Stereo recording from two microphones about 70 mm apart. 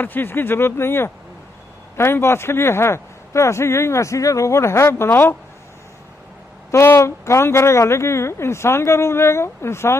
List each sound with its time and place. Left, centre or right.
0.0 s a man's voice: left
6.7 s a man's voice: left